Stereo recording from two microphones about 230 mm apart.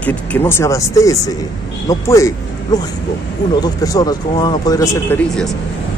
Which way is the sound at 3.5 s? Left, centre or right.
Centre.